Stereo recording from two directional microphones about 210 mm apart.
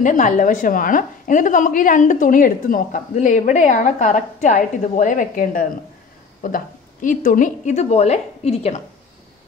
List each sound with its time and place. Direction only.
0.0 s a woman's voice: 40° left (ahead or behind)